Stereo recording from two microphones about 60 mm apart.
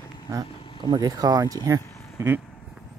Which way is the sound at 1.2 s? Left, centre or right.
Right.